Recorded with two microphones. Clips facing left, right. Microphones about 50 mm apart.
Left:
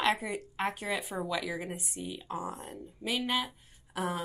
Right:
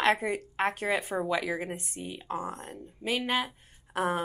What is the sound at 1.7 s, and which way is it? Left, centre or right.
Speech, centre.